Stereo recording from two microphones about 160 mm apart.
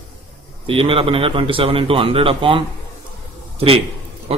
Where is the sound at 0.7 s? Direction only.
35° right (ahead or behind).